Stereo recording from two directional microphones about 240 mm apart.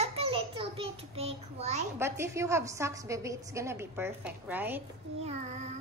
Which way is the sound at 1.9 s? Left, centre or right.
Centre.